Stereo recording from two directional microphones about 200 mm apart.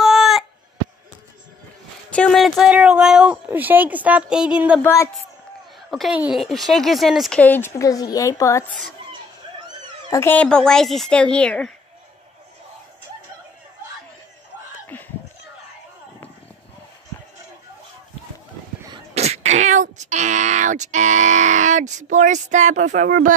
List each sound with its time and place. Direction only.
0.0 s a sound: centre (ahead or behind)
2.1 s a woman's voice: centre (ahead or behind)
4.8 s a woman's voice: 15° left (ahead or behind)
5.9 s a woman's voice: centre (ahead or behind); by 8.6 s 15° left (ahead or behind)
10.0 s a woman's voice: 15° left (ahead or behind)
14.9 s a sound: 10° left (ahead or behind)
19.1 s speech: 30° right (ahead or behind)